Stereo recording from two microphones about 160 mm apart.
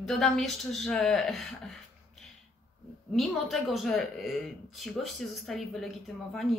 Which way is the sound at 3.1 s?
Centre (ahead or behind).